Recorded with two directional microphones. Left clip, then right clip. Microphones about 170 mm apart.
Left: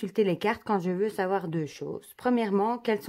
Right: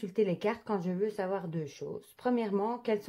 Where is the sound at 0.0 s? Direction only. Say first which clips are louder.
Left 4 dB; 45° left (ahead or behind).